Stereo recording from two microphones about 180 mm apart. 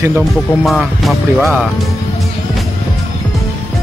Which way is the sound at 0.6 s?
Centre (ahead or behind).